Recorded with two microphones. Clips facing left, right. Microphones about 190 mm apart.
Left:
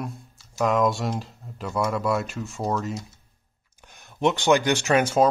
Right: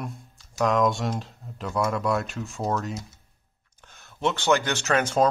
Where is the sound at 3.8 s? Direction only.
15° left (ahead or behind).